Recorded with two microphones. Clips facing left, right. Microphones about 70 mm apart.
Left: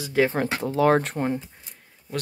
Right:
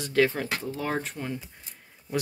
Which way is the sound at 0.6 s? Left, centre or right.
Left.